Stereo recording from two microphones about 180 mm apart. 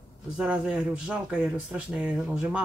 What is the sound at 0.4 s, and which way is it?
Speech, 5° right (ahead or behind).